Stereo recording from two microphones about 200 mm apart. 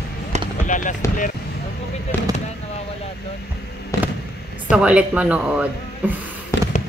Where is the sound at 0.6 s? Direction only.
40° left (ahead or behind).